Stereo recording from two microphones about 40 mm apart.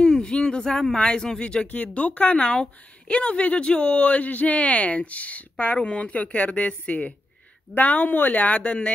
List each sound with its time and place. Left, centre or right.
0.0 s speech: centre
1.7 s speech: left